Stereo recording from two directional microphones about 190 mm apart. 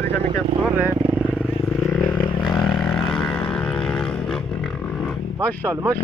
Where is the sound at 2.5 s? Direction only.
25° left (ahead or behind).